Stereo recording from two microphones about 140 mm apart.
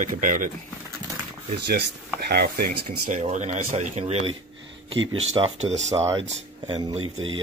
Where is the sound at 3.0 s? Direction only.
60° right (ahead or behind).